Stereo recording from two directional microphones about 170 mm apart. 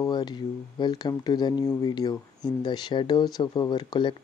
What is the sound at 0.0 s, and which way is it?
Speech, 25° left (ahead or behind).